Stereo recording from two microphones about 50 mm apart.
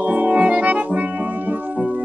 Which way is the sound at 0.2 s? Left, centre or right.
Right.